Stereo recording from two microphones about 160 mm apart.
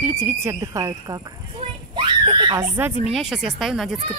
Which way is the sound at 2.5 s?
15° right (ahead or behind).